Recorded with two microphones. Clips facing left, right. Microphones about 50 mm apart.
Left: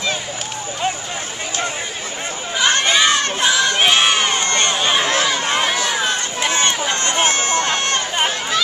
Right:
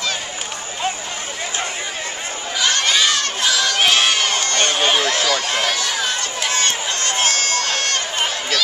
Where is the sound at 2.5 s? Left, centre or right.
Left.